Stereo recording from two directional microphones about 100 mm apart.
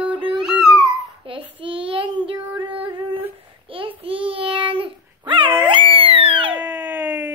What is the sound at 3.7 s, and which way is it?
A child's voice, 60° right (ahead or behind).